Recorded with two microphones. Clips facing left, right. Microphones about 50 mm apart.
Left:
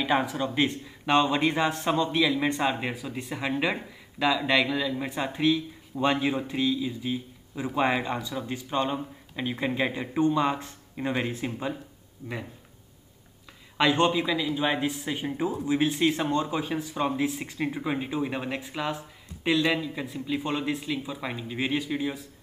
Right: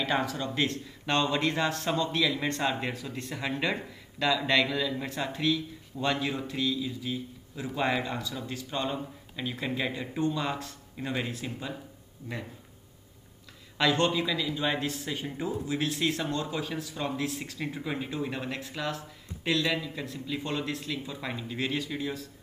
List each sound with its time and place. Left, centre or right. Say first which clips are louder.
0.0 s speech: left 3 dB; centre
13.7 s speech: left 3 dB; left